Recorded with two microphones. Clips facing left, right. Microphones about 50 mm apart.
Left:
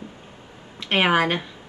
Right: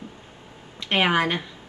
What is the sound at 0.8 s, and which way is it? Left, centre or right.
Speech, centre.